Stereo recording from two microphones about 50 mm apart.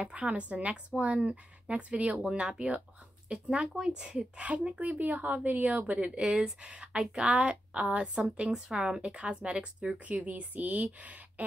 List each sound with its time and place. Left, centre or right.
0.0 s a woman's voice: right
2.2 s a woman's voice: centre
4.5 s a woman's voice: right